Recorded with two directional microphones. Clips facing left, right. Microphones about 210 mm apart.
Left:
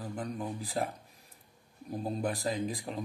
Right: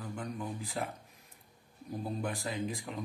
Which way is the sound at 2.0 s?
35° left (ahead or behind).